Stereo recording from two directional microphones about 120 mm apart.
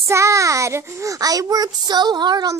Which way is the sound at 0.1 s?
25° right (ahead or behind).